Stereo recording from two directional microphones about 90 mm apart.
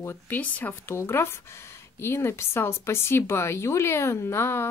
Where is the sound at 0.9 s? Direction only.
30° left (ahead or behind).